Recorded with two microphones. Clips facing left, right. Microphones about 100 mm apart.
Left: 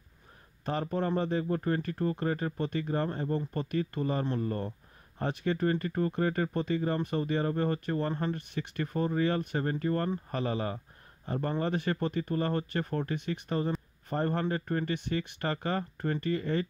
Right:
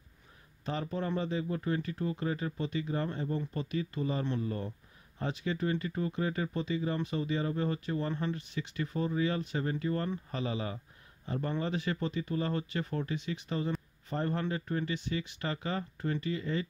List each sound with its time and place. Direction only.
0.7 s speech: 50° left (ahead or behind)